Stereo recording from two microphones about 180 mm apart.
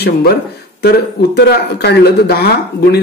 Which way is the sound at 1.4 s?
65° left (ahead or behind).